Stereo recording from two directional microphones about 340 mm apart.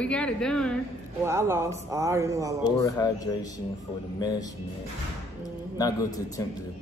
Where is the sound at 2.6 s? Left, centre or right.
Centre.